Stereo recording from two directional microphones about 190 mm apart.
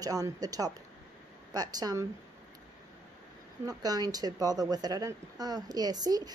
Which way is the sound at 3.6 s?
20° right (ahead or behind).